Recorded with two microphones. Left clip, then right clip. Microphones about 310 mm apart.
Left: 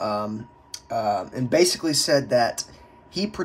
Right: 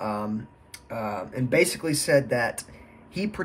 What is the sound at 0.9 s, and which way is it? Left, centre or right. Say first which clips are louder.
Speech: left 7 dB; centre.